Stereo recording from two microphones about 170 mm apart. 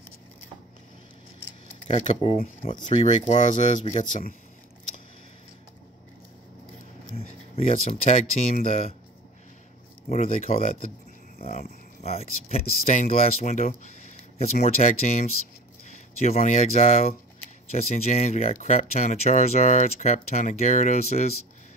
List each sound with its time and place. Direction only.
1.9 s speech: 40° left (ahead or behind)
7.2 s speech: 35° left (ahead or behind)
10.0 s speech: 40° left (ahead or behind)
12.0 s speech: 40° left (ahead or behind)